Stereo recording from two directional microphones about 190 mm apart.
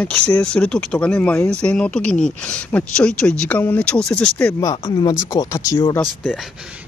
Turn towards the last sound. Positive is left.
turn(degrees=15)  # may be behind; listen again after turning